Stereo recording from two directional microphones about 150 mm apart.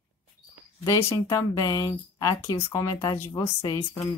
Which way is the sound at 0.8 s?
20° left (ahead or behind).